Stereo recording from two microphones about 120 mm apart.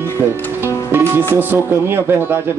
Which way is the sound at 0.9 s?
15° right (ahead or behind).